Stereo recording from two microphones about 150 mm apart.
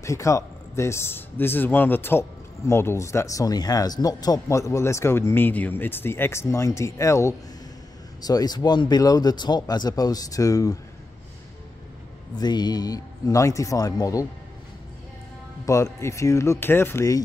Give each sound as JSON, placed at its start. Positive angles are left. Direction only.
{"t": 0.0, "sound": "a man's voice", "side_deg": 20}
{"t": 12.4, "sound": "a man's voice", "side_deg": 30}
{"t": 15.6, "sound": "a man's voice", "side_deg": 20}